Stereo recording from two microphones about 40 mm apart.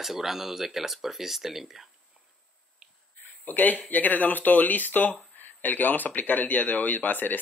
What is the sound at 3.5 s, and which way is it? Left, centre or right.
Speech, left.